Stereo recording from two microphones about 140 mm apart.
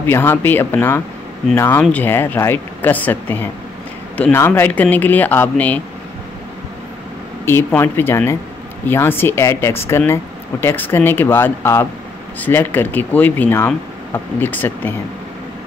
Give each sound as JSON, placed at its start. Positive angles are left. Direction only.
{"t": 0.0, "sound": "speech", "side_deg": 15}
{"t": 7.4, "sound": "speech", "side_deg": 15}